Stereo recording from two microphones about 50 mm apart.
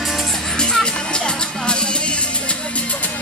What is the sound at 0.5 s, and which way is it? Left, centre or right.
Music, centre.